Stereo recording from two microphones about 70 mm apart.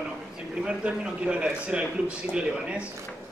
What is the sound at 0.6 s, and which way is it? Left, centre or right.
A man's voice, centre.